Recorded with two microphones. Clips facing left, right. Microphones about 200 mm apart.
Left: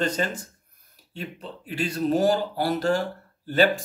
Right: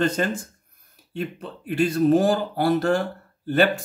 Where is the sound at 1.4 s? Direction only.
55° right (ahead or behind).